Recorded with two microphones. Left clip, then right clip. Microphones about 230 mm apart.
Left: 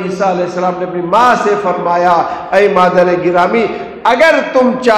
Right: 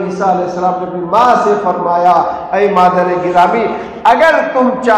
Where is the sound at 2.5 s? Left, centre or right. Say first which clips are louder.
Left 1 dB; left.